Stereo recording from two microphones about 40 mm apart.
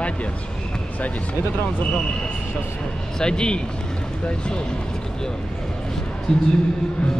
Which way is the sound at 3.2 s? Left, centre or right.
Left.